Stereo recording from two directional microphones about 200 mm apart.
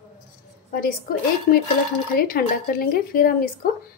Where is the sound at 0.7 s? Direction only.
45° left (ahead or behind).